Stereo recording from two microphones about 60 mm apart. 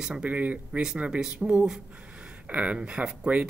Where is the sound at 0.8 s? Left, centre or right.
Centre.